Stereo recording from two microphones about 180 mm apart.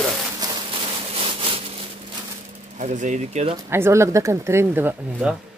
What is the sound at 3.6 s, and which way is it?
Speech, 15° right (ahead or behind).